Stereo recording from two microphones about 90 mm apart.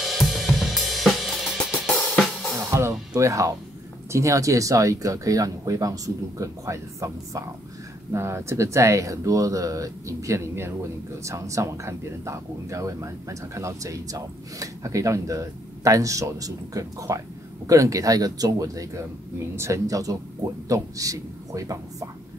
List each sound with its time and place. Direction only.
0.0 s cymbal: centre (ahead or behind)
2.7 s music: 30° right (ahead or behind)
3.2 s speech: 35° right (ahead or behind)